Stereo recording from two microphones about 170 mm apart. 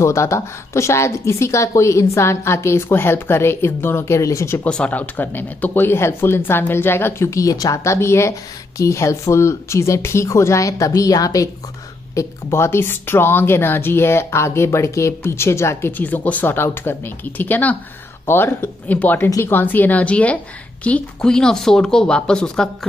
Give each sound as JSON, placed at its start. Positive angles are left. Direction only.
{"t": 0.0, "sound": "speech", "side_deg": 15}
{"t": 4.6, "sound": "speech", "side_deg": 5}